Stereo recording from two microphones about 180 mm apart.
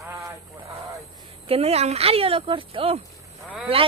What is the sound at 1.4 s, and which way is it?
A woman's voice, 35° right (ahead or behind).